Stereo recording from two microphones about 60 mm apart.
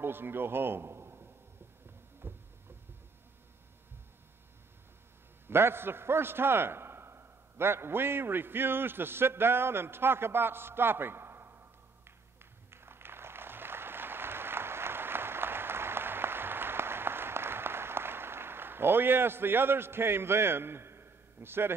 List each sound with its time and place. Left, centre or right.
0.0 s a man's voice: right
2.2 s a sound: right
5.5 s a man's voice: right
12.7 s applause: right